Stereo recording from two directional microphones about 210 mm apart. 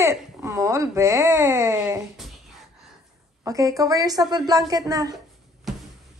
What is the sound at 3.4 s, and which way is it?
Speech, 15° right (ahead or behind).